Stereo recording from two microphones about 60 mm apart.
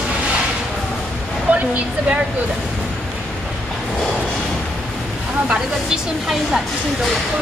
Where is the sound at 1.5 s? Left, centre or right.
Right.